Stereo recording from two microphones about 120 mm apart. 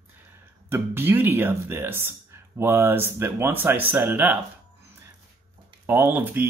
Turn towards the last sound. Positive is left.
turn(degrees=-15)  # may be behind; listen again after turning